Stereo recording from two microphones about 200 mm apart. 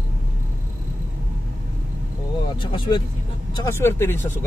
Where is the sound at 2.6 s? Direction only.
25° left (ahead or behind).